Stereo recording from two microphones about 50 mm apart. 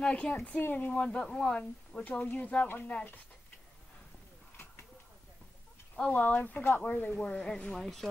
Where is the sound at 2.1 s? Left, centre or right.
Left.